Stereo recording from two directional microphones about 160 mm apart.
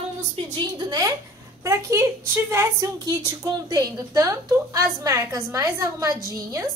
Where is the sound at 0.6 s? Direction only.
25° right (ahead or behind).